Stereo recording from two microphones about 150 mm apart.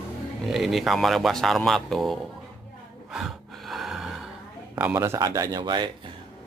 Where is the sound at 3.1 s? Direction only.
Centre (ahead or behind); by 6.1 s 30° right (ahead or behind).